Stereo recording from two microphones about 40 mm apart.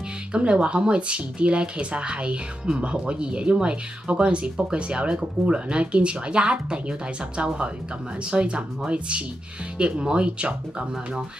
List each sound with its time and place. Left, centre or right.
0.4 s speech: right